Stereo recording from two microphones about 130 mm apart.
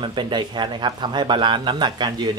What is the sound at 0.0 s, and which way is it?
Speech, 35° right (ahead or behind).